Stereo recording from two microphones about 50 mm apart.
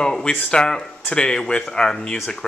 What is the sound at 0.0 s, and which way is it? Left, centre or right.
Speech, centre.